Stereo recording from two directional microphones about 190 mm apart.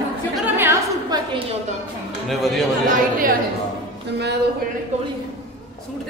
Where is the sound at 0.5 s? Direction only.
15° right (ahead or behind).